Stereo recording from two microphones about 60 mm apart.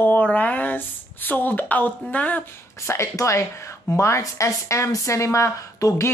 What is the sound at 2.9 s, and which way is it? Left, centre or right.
Speech, left.